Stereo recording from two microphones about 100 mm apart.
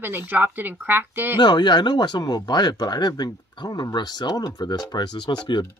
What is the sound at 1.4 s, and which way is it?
Speech, 45° left (ahead or behind).